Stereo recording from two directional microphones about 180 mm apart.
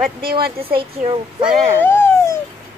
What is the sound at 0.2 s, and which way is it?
Speech, 55° right (ahead or behind).